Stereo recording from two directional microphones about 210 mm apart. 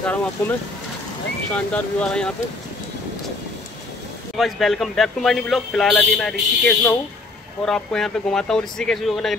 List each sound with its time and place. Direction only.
0.0 s speech: 5° left (ahead or behind)
4.4 s speech: centre (ahead or behind)